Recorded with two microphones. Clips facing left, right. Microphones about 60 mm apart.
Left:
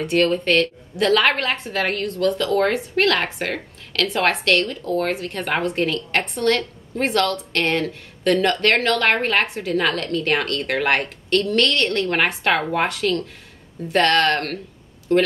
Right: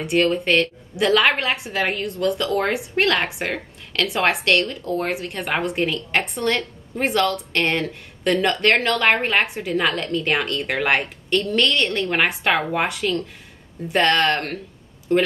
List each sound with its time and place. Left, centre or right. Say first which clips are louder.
0.2 s a woman's voice: even; centre
4.8 s speech: left 2 dB; right
5.3 s a woman's voice: left 1 dB; centre